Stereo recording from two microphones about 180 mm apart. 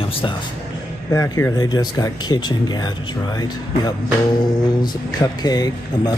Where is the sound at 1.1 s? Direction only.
15° left (ahead or behind).